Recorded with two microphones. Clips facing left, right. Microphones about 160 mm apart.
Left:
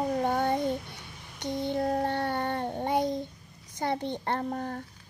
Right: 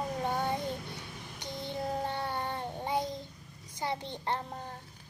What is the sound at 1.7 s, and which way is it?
Child singing, 55° left (ahead or behind).